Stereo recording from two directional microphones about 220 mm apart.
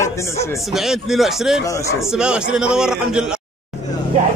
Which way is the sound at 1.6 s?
15° left (ahead or behind).